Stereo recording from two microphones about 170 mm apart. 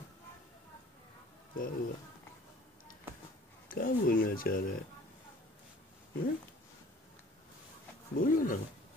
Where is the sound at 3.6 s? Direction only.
55° left (ahead or behind).